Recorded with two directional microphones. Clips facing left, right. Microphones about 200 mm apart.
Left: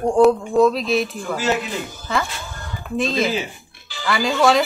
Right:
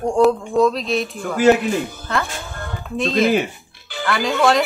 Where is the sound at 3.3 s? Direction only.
60° right (ahead or behind).